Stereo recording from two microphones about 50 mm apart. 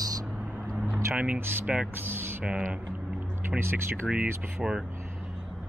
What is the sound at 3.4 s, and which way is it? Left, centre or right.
Speech, right.